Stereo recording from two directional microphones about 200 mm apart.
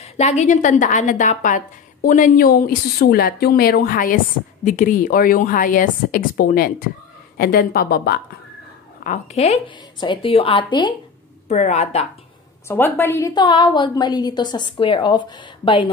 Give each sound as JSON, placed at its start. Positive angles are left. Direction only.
{"t": 0.0, "sound": "speech", "side_deg": 35}
{"t": 9.0, "sound": "a woman's voice", "side_deg": 35}
{"t": 11.4, "sound": "speech", "side_deg": 35}
{"t": 12.6, "sound": "a woman's voice", "side_deg": 10}